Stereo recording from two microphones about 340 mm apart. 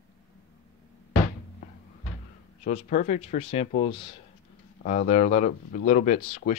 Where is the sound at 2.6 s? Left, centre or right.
Left.